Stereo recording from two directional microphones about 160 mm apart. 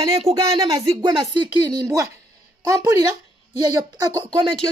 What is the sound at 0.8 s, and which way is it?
Speech, 30° right (ahead or behind).